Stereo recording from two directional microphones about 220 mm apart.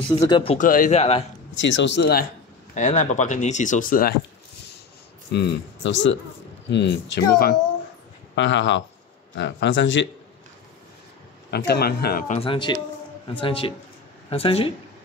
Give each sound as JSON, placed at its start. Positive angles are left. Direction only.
{"t": 0.2, "sound": "speech", "side_deg": 25}
{"t": 0.6, "sound": "a man's voice", "side_deg": 35}
{"t": 1.6, "sound": "speech", "side_deg": 55}
{"t": 2.7, "sound": "speech", "side_deg": 35}
{"t": 5.3, "sound": "speech", "side_deg": 55}
{"t": 11.5, "sound": "speech", "side_deg": 45}
{"t": 12.4, "sound": "speech", "side_deg": 20}